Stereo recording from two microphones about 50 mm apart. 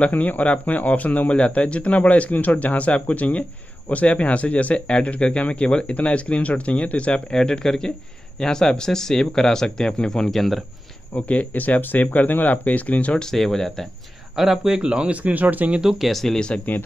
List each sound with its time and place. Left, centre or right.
0.0 s speech: left; by 10.6 s centre
11.1 s speech: left
13.2 s speech: centre
14.3 s speech: centre; by 15.8 s right
15.8 s speech: centre
16.1 s speech: centre
16.3 s speech: centre